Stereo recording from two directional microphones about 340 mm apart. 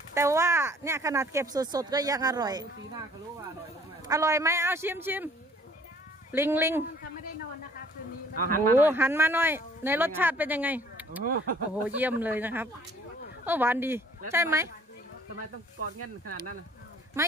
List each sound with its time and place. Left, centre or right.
0.1 s speech: centre
4.1 s speech: centre
6.3 s speech: centre
8.4 s speech: right
8.7 s speech: centre